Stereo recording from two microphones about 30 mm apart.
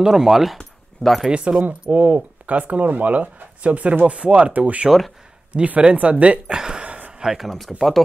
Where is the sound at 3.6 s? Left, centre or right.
Right.